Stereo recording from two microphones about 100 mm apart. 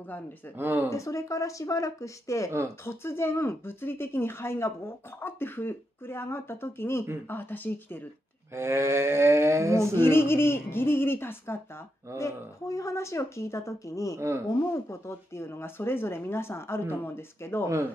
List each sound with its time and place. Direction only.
0.6 s cattle: 20° right (ahead or behind)
0.8 s speech: 30° left (ahead or behind)
8.5 s cattle: 25° right (ahead or behind)
9.9 s speech: 25° left (ahead or behind)
14.1 s cattle: 30° right (ahead or behind)
14.7 s speech: 25° left (ahead or behind)